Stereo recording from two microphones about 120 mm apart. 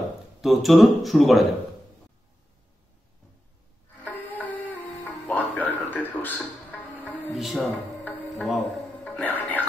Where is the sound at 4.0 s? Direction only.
15° left (ahead or behind).